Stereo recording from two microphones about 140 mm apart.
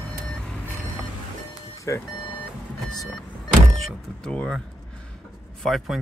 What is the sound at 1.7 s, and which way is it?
Vehicle, 20° left (ahead or behind).